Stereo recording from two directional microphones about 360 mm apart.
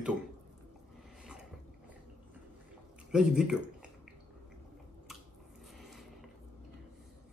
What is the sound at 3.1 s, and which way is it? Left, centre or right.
Speech, centre.